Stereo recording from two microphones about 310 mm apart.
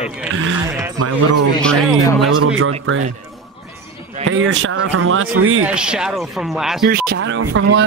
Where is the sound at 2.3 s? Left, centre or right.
Right.